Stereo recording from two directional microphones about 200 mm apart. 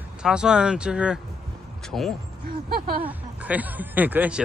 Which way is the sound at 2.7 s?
45° right (ahead or behind).